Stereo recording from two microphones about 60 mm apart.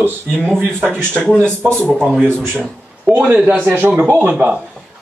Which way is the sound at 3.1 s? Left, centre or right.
Right.